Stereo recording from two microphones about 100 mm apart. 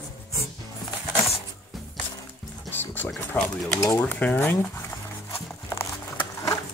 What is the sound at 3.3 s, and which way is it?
Speech, 20° left (ahead or behind).